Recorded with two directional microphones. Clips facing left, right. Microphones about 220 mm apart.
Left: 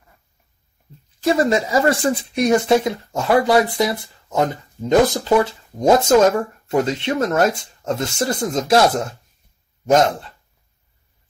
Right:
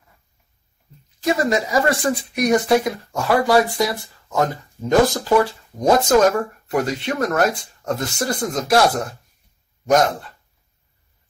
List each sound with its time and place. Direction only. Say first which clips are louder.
1.2 s speech: left 2 dB; 30° left (ahead or behind)